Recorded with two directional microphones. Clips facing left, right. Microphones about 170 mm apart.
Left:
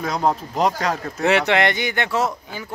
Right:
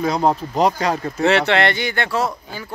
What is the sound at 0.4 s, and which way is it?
Speech, centre (ahead or behind).